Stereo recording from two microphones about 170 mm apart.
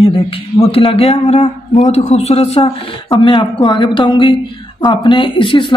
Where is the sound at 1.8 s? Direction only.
40° left (ahead or behind).